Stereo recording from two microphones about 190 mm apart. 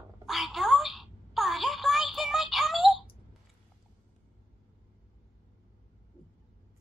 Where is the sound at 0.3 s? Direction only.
Centre (ahead or behind).